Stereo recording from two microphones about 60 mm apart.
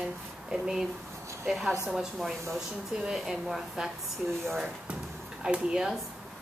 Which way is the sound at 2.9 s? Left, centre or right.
Centre.